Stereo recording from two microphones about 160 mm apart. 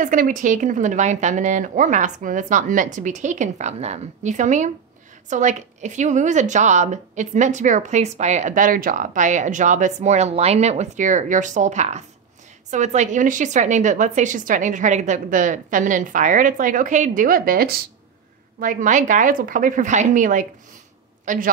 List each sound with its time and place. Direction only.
0.0 s speech: 55° right (ahead or behind)
18.6 s speech: 55° right (ahead or behind)